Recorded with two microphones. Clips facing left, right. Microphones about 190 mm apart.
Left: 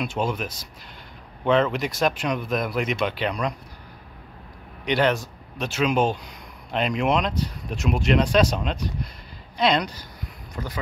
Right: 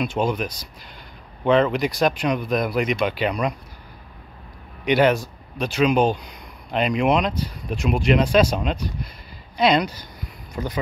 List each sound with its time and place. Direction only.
0.0 s speech: centre (ahead or behind)
4.8 s speech: 10° right (ahead or behind)
5.6 s speech: centre (ahead or behind)
10.6 s speech: 15° right (ahead or behind)